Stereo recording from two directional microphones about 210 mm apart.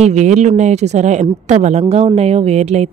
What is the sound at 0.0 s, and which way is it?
A woman's voice, 35° right (ahead or behind).